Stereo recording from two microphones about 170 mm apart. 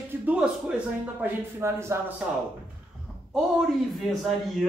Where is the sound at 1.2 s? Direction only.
15° right (ahead or behind).